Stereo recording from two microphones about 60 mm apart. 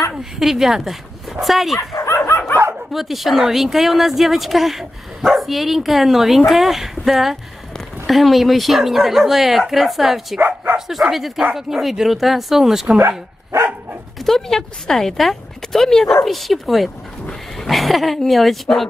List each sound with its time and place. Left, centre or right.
0.1 s speech: centre
2.0 s bow-wow: left
2.9 s speech: centre
10.4 s dog: right
10.9 s speech: centre
14.2 s speech: centre